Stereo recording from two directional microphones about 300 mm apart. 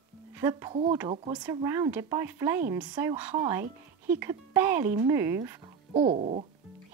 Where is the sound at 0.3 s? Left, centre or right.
Centre.